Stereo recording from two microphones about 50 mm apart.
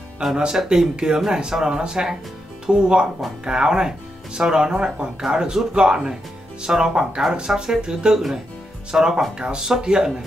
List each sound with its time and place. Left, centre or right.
0.4 s speech: centre